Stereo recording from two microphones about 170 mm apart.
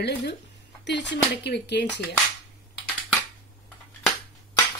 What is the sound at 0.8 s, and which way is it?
Speech, 90° left.